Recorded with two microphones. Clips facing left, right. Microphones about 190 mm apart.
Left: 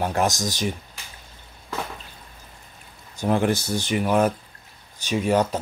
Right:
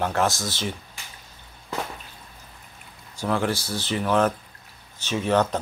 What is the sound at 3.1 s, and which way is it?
Speech, 20° left (ahead or behind).